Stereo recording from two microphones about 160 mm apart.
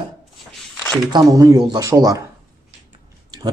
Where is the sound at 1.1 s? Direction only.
25° right (ahead or behind).